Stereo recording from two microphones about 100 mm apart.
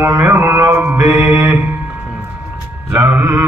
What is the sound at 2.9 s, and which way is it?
Mantra, 10° right (ahead or behind).